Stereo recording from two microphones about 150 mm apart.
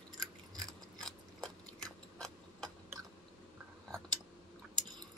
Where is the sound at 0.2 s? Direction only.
25° right (ahead or behind).